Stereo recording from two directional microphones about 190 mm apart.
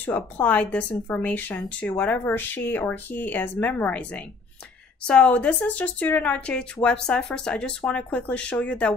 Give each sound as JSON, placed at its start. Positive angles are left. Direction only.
{"t": 0.0, "sound": "a woman's voice", "side_deg": 10}